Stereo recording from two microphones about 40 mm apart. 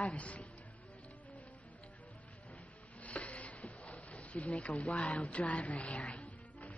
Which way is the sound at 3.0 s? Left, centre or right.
Left.